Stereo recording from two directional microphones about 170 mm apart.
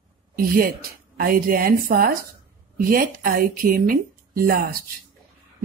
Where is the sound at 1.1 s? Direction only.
55° right (ahead or behind).